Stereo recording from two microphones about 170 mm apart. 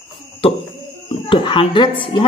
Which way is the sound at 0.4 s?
35° left (ahead or behind).